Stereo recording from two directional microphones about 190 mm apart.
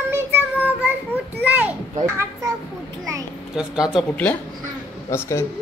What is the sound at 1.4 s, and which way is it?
Children playing, 10° right (ahead or behind).